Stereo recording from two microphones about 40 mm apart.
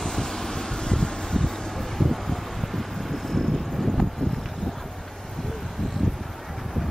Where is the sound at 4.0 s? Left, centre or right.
Centre.